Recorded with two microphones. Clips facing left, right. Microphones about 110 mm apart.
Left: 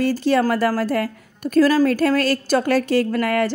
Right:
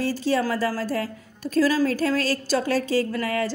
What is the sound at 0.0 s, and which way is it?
A woman's voice, 60° left (ahead or behind).